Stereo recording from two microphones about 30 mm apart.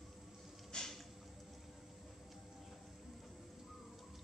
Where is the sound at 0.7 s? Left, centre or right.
Left.